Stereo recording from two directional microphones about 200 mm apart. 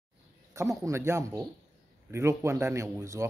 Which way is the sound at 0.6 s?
15° right (ahead or behind).